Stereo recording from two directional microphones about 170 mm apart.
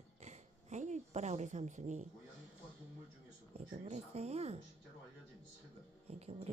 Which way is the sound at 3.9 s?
40° right (ahead or behind).